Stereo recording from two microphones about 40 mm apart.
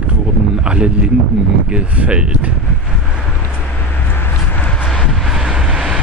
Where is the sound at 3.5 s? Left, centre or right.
Left.